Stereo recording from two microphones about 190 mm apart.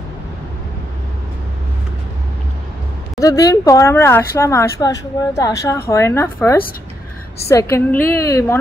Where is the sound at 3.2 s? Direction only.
15° left (ahead or behind).